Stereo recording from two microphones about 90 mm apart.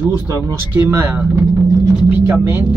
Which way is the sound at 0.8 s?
25° right (ahead or behind).